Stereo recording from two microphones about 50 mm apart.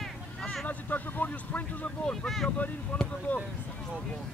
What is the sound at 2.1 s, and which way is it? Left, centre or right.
Vehicle, centre.